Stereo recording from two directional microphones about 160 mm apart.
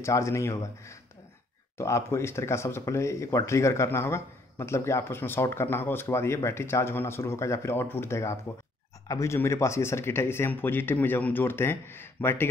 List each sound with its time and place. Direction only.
0.0 s speech: 20° left (ahead or behind)